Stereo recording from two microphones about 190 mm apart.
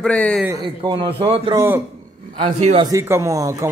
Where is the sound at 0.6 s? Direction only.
25° right (ahead or behind).